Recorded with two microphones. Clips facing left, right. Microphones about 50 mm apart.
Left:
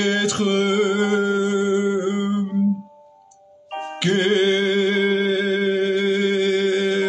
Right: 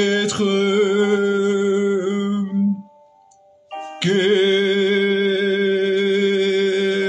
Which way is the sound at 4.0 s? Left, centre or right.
Centre.